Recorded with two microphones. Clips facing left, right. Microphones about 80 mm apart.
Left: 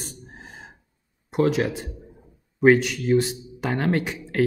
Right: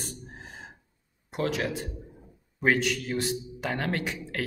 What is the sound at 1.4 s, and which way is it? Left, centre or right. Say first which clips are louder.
Speech: left 7 dB; left.